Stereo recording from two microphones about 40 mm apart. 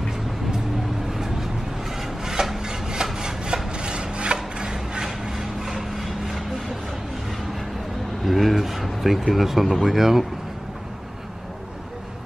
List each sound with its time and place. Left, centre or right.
1.1 s vehicle: centre
2.0 s rub: centre
8.3 s a sound: centre